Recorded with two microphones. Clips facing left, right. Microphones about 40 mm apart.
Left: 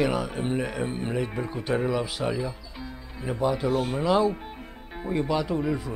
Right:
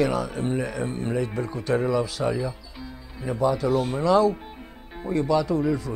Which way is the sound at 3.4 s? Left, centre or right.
Left.